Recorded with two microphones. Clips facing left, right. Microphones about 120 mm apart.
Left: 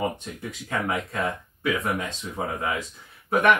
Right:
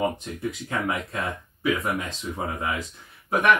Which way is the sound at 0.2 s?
Centre (ahead or behind).